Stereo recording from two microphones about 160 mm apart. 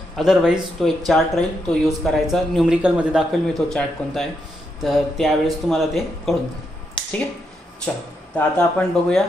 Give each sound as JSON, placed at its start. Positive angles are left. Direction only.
{"t": 0.1, "sound": "speech", "side_deg": 0}
{"t": 7.0, "sound": "a sound", "side_deg": 30}
{"t": 8.4, "sound": "speech", "side_deg": 10}